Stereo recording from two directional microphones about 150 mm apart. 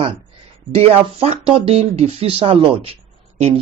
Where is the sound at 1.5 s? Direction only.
40° right (ahead or behind).